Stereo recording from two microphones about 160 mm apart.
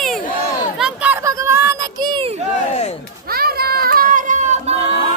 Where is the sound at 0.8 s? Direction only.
5° right (ahead or behind); by 2.3 s 25° right (ahead or behind).